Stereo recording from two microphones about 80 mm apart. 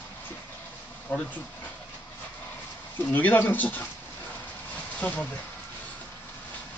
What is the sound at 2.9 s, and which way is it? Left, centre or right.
Speech, left.